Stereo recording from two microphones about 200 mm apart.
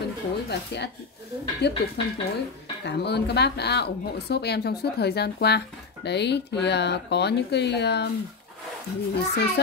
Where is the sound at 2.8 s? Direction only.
55° left (ahead or behind).